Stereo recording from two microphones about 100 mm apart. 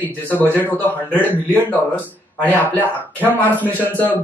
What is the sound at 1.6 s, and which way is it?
A man's voice, 15° left (ahead or behind).